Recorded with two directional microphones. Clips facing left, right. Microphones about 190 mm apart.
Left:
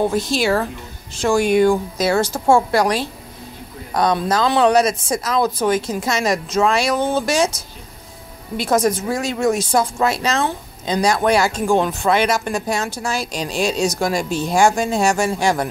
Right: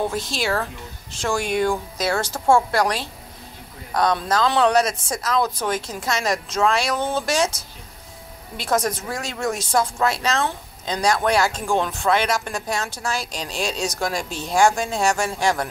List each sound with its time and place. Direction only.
0.1 s a woman's voice: 5° left (ahead or behind)
8.5 s a woman's voice: 5° left (ahead or behind)